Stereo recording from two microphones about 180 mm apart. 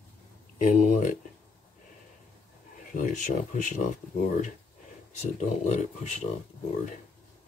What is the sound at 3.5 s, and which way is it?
Speech, 40° left (ahead or behind).